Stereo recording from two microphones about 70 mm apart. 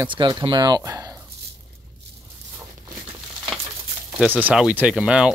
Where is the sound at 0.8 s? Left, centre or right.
Right.